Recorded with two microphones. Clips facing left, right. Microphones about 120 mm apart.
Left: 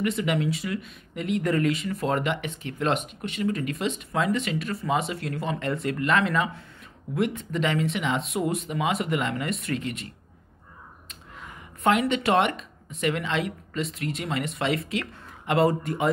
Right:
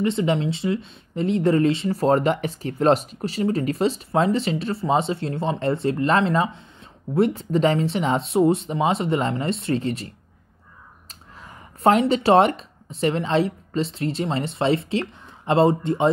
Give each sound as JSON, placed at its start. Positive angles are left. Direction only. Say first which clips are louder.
{"t": 0.0, "sound": "speech", "louder": "right 4 dB", "side_deg": -30}